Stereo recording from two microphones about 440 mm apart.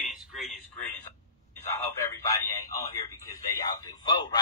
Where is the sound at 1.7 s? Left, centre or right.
Centre.